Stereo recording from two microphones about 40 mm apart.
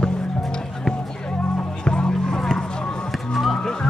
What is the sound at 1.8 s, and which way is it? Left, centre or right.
Music, centre.